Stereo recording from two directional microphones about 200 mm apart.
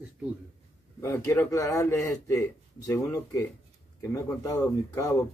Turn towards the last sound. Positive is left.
turn(degrees=15)  # may be behind; listen again after turning